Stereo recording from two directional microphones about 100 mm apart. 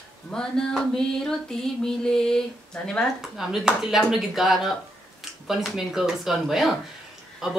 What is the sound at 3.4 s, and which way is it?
A woman's voice, 5° right (ahead or behind).